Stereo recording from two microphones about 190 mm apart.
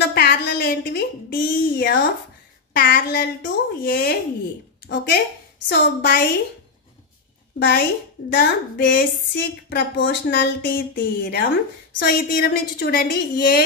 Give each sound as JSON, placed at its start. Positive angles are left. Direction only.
{"t": 0.1, "sound": "a sound", "side_deg": 55}
{"t": 2.7, "sound": "a woman's voice", "side_deg": 50}
{"t": 4.8, "sound": "speech", "side_deg": 65}
{"t": 7.5, "sound": "a woman's voice", "side_deg": 65}